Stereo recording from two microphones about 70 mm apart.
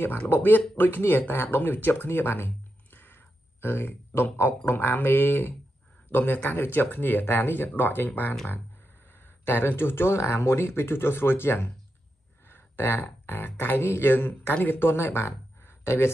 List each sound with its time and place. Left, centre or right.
0.3 s speech: left
9.5 s speech: left